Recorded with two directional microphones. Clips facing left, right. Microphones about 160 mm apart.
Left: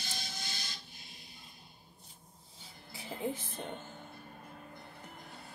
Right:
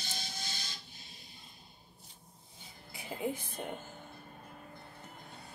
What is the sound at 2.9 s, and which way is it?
Speech, 15° right (ahead or behind).